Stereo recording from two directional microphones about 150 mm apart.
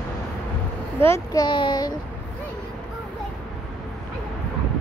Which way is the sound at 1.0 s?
20° left (ahead or behind).